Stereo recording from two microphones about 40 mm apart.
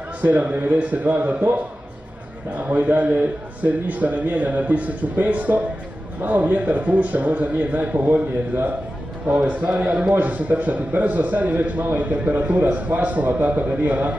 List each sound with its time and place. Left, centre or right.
0.2 s speech: right
2.5 s a man's voice: right
9.4 s a man's voice: right
10.1 s speech: right
11.8 s speech: right